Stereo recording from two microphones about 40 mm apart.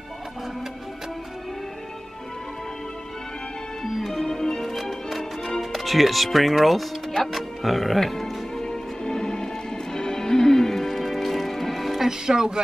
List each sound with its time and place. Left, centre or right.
3.8 s music: centre
5.6 s speech: centre
8.6 s music: centre
12.1 s speech: centre